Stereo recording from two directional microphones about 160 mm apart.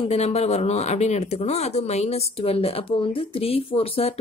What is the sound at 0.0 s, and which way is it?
Speech, 40° left (ahead or behind).